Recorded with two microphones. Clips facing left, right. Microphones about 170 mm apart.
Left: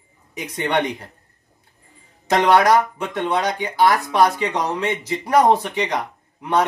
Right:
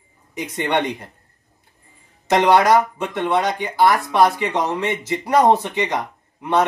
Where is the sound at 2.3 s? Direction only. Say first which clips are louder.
Right 1 dB; 15° right (ahead or behind).